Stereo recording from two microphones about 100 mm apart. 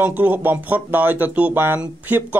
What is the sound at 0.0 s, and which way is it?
Speech, 15° right (ahead or behind).